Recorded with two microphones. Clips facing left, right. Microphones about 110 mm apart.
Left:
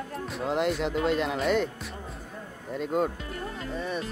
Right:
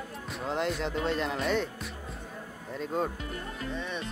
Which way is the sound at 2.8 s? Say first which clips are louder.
Left 4 dB; 5° left (ahead or behind).